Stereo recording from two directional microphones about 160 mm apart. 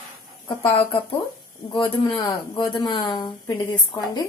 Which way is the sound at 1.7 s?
30° left (ahead or behind).